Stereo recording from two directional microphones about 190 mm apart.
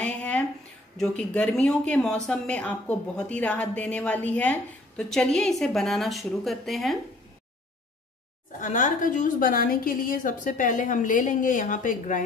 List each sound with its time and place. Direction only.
0.0 s a sound: 5° left (ahead or behind)
0.9 s speech: 5° left (ahead or behind)
8.5 s a woman's voice: 40° left (ahead or behind)